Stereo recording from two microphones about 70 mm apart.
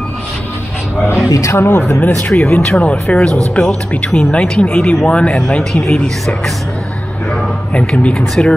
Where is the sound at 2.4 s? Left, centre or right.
Left; by 6.4 s centre.